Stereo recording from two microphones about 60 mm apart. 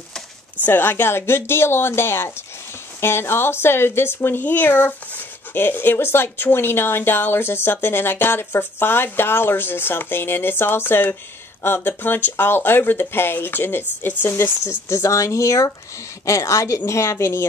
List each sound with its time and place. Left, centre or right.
0.7 s speech: left
14.9 s a woman's voice: left